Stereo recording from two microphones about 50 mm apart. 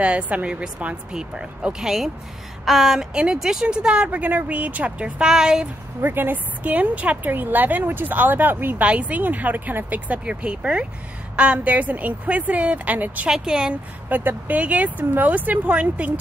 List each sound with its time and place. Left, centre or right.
0.0 s speech: right
1.1 s a woman's voice: centre
4.1 s speech: right
5.2 s speech: centre
5.9 s speech: right
6.6 s speech: right
8.8 s speech: right
10.2 s speech: right
13.3 s speech: centre
14.0 s speech: right